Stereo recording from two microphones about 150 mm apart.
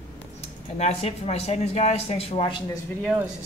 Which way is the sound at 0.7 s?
45° left (ahead or behind).